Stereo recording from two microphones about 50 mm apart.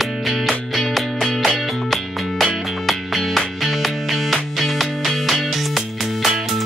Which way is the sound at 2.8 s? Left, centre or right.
Centre.